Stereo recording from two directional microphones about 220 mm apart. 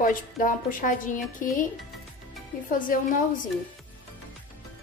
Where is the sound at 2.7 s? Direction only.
40° left (ahead or behind).